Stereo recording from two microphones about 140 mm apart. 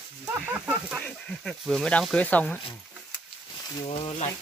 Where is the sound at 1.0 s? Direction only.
5° left (ahead or behind).